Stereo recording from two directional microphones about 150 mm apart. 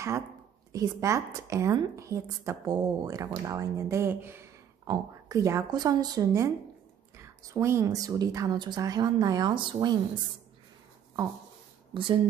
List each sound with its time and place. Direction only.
0.7 s a woman's voice: 20° right (ahead or behind)
11.9 s speech: 35° right (ahead or behind)